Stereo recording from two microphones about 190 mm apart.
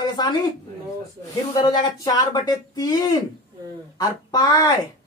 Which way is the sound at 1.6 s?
20° left (ahead or behind).